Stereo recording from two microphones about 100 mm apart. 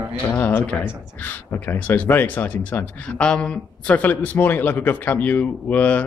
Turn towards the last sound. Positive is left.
turn(degrees=15)  # may be behind; listen again after turning